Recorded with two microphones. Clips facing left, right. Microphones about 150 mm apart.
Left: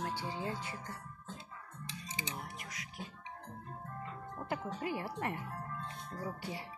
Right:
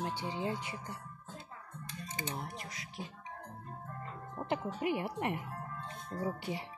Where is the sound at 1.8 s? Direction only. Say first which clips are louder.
Right 2 dB; 50° right (ahead or behind).